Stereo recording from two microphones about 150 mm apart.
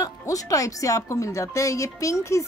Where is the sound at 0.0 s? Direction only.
25° left (ahead or behind).